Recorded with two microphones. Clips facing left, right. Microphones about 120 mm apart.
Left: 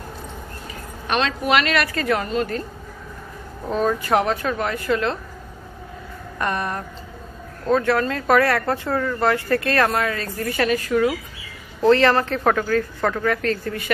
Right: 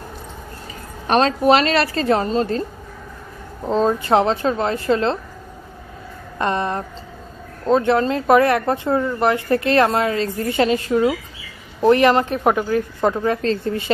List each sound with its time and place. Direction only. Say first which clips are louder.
1.0 s speech: right 7 dB; 35° right (ahead or behind)
3.6 s speech: right 3 dB; 25° right (ahead or behind)
6.3 s speech: right 4 dB; 25° right (ahead or behind)